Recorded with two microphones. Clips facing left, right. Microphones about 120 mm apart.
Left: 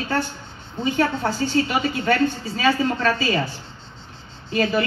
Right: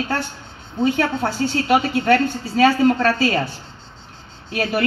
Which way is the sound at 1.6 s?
65° right (ahead or behind).